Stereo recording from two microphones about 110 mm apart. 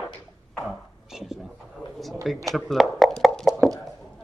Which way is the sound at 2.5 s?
Centre (ahead or behind).